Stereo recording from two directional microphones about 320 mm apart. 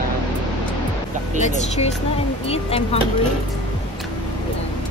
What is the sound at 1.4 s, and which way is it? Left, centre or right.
Speech, centre.